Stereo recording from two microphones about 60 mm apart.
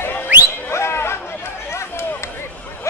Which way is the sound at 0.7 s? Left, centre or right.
Left.